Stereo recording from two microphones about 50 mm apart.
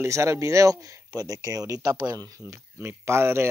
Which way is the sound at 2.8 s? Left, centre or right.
Right.